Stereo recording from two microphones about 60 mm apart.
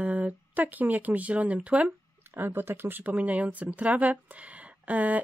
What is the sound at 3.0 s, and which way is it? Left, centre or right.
Speech, right.